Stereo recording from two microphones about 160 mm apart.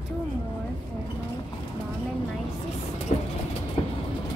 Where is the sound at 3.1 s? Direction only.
45° left (ahead or behind).